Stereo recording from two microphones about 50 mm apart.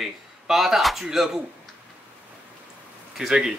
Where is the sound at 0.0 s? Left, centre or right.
Centre.